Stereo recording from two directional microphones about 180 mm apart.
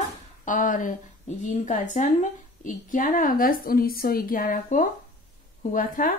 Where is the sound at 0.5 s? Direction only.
45° left (ahead or behind).